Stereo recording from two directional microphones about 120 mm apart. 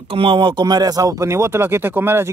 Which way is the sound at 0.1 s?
45° right (ahead or behind).